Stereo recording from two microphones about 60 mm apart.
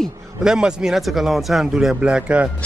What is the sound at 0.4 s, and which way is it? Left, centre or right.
Speech, centre.